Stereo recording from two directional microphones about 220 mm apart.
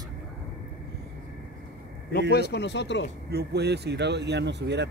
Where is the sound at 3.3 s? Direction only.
45° right (ahead or behind).